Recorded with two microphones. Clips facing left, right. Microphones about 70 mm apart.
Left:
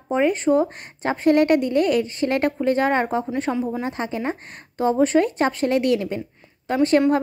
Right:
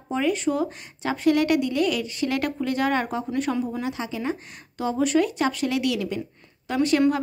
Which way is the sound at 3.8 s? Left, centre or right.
Left.